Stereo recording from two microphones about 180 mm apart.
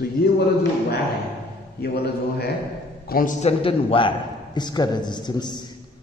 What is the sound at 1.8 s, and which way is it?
Speech, 60° left (ahead or behind).